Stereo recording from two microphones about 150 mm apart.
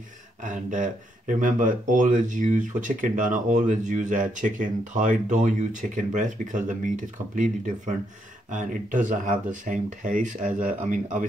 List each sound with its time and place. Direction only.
0.4 s speech: 60° right (ahead or behind)